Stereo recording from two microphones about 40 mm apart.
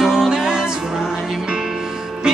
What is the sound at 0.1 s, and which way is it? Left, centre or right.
Music, centre.